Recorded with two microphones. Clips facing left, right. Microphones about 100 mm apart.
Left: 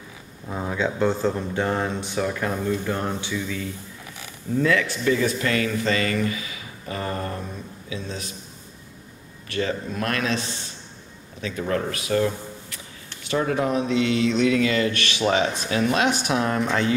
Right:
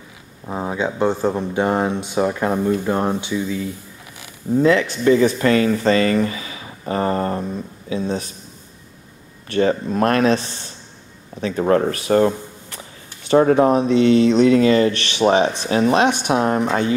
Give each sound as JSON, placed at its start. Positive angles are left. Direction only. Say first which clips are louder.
{"t": 0.5, "sound": "speech", "louder": "right 3 dB", "side_deg": -25}
{"t": 3.2, "sound": "speech", "louder": "right 6 dB", "side_deg": -20}
{"t": 9.5, "sound": "speech", "louder": "right 8 dB", "side_deg": -40}